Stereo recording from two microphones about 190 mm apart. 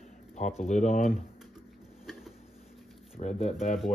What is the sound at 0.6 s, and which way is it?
Speech, 35° left (ahead or behind).